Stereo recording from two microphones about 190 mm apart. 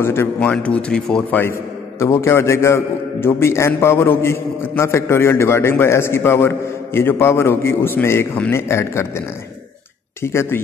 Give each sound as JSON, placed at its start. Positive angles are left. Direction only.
{"t": 0.0, "sound": "a man's voice", "side_deg": 10}
{"t": 10.2, "sound": "a man's voice", "side_deg": 15}